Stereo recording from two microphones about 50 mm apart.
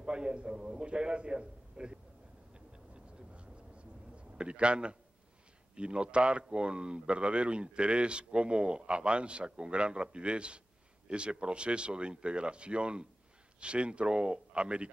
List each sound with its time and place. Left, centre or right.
0.0 s speech: centre
2.5 s vehicle: right
5.8 s speech: right